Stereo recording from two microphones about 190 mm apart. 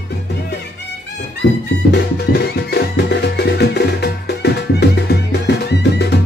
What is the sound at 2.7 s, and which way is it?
Music, 60° left (ahead or behind).